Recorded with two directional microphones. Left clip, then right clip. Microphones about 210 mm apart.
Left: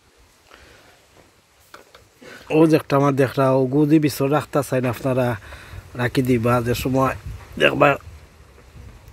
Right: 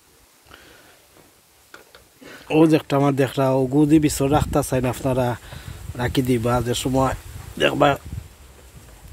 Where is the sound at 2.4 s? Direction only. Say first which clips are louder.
Left 1 dB; centre (ahead or behind).